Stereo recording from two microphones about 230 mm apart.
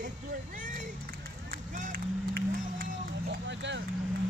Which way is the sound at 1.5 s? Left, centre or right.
Right.